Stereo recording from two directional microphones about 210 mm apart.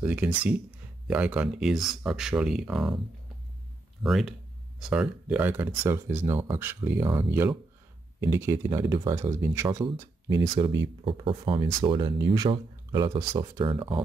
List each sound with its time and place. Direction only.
0.0 s speech: 5° right (ahead or behind)
4.0 s speech: centre (ahead or behind); by 14.0 s 25° right (ahead or behind)